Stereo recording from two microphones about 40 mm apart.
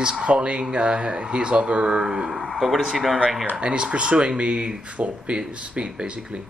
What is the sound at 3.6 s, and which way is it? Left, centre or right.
Speech, right.